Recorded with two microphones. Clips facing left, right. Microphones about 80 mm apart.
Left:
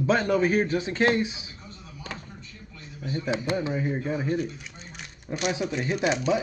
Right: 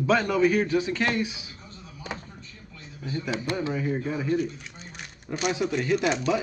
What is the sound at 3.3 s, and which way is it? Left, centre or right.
Speech, left.